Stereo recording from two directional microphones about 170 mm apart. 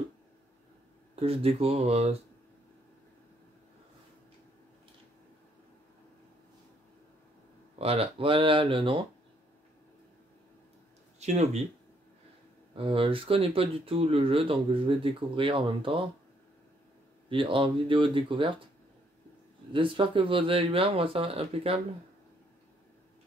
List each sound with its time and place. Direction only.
1.1 s speech: 35° right (ahead or behind)
7.8 s speech: 35° right (ahead or behind)
11.1 s a sound: 40° right (ahead or behind)
12.7 s speech: 35° right (ahead or behind)
17.3 s speech: 30° right (ahead or behind)
19.7 s speech: 30° right (ahead or behind)